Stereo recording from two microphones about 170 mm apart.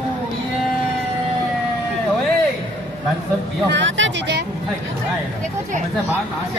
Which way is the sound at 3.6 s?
90° right.